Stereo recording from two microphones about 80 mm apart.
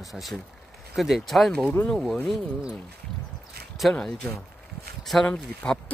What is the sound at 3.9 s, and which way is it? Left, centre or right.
Speech, centre.